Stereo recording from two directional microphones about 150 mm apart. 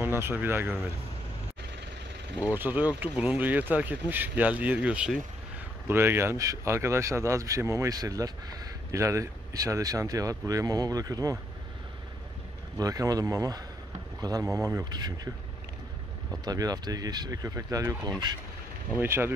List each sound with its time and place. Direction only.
0.2 s speech: 15° right (ahead or behind)
2.4 s speech: 10° right (ahead or behind)
12.7 s speech: 25° right (ahead or behind)
16.4 s speech: 25° right (ahead or behind)